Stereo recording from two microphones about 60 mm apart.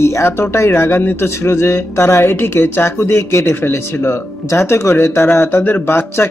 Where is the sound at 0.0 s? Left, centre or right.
Left.